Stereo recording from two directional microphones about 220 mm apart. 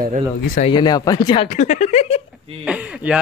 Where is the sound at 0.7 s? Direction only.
20° left (ahead or behind).